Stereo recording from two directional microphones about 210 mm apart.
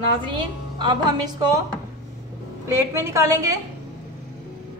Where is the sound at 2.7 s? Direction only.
15° right (ahead or behind).